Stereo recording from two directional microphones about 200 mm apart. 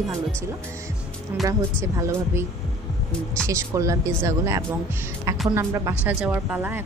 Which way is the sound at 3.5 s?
15° right (ahead or behind).